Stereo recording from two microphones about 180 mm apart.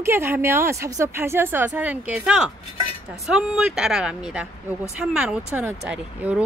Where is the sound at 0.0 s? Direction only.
15° right (ahead or behind).